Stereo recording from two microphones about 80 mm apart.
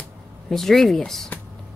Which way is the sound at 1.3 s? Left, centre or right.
Left.